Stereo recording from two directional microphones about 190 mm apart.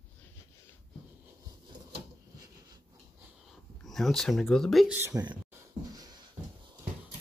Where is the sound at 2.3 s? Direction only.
20° right (ahead or behind).